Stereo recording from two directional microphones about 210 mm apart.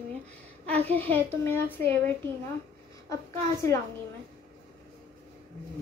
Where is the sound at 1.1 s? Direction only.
10° left (ahead or behind).